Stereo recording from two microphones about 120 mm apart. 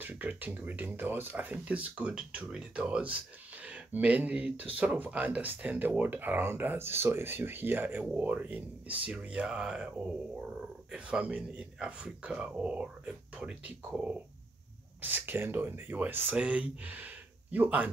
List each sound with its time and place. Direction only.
0.0 s speech: 15° right (ahead or behind)